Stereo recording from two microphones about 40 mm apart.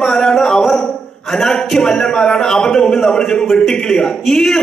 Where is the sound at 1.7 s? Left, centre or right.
Centre.